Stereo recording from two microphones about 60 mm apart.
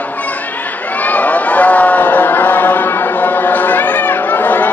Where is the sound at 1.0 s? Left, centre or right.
Left.